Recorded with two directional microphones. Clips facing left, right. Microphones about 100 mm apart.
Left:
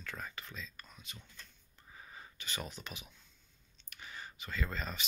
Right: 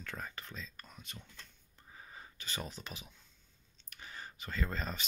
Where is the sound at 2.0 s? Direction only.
35° right (ahead or behind).